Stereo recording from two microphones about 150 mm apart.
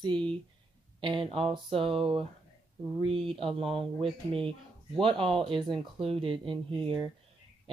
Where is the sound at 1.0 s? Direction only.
35° right (ahead or behind).